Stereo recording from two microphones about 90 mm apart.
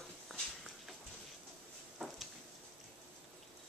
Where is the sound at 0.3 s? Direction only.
Centre (ahead or behind).